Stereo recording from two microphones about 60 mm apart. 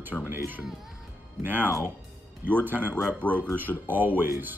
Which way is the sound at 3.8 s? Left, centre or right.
Right.